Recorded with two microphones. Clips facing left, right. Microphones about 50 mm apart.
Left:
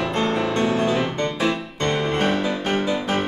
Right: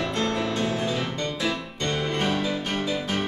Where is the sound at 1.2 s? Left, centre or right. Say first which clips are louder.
Left 5 dB; left.